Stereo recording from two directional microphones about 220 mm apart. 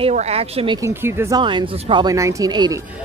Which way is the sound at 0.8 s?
10° right (ahead or behind).